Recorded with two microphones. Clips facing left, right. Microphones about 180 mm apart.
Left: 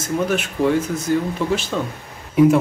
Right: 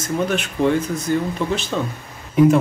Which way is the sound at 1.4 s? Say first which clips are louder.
Left 2 dB; 20° right (ahead or behind).